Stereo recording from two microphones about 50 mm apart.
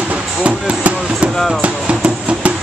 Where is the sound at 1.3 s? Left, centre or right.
Centre.